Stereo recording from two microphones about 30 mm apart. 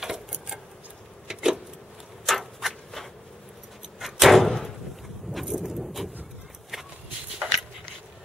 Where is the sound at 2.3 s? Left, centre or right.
Centre.